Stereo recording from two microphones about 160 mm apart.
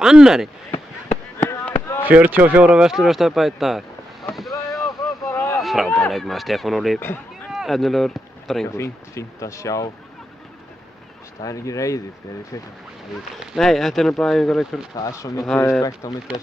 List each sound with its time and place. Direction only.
0.0 s speech: 5° right (ahead or behind)
0.7 s a sound: 40° left (ahead or behind)
2.0 s speech: 10° right (ahead or behind)
4.3 s boat: centre (ahead or behind)
4.8 s vehicle: 20° left (ahead or behind)
5.6 s speech: centre (ahead or behind)
8.6 s speech: 20° left (ahead or behind)
11.4 s speech: 20° left (ahead or behind)
13.4 s speech: centre (ahead or behind)
15.0 s speech: 20° left (ahead or behind)
15.4 s speech: 10° left (ahead or behind)